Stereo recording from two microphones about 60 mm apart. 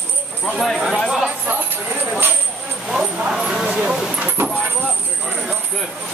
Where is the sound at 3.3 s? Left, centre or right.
Centre.